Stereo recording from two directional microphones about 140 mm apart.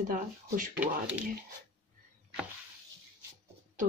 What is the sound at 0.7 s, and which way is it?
Speech, 10° right (ahead or behind).